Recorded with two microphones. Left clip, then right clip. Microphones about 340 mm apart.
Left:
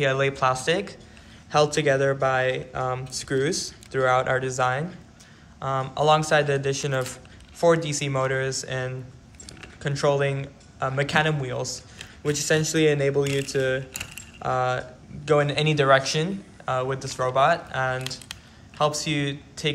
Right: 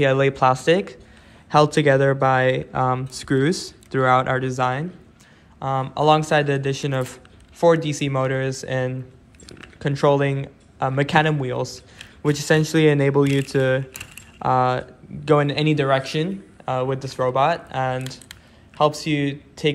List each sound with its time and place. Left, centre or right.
0.0 s speech: centre
9.5 s a sound: centre
10.8 s speech: centre